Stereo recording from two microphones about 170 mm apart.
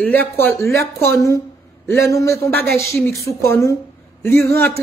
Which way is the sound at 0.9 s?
15° left (ahead or behind).